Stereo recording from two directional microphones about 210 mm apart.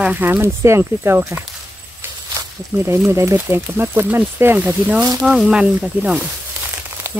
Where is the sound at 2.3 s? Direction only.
15° right (ahead or behind).